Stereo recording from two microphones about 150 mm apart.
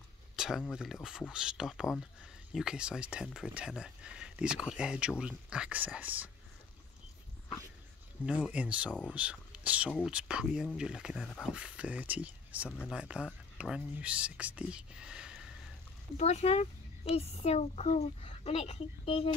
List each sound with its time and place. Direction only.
0.4 s speech: 5° right (ahead or behind)
8.3 s speech: 10° right (ahead or behind)
11.2 s speech: 5° left (ahead or behind)
11.5 s speech: 10° right (ahead or behind)
16.2 s speech: 45° left (ahead or behind)